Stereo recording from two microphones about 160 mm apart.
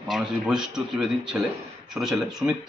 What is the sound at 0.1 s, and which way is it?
Speech, 5° right (ahead or behind).